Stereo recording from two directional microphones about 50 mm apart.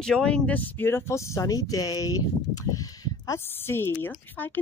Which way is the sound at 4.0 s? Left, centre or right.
Left.